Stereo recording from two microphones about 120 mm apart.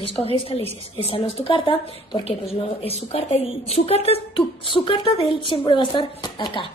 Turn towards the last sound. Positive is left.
turn(degrees=40)  # may be behind; listen again after turning